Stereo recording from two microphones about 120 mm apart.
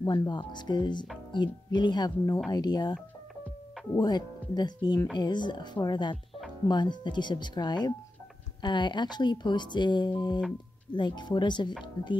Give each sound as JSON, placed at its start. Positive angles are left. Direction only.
{"t": 0.0, "sound": "speech", "side_deg": 35}